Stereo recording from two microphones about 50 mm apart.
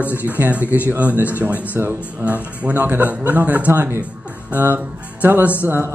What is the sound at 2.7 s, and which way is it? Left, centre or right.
Speech, right.